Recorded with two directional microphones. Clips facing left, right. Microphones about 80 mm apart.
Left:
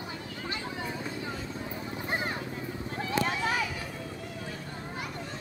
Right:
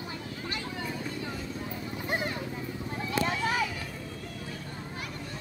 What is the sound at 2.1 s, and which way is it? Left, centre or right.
Vehicle, left.